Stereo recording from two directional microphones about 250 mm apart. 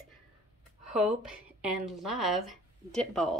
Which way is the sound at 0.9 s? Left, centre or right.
Centre.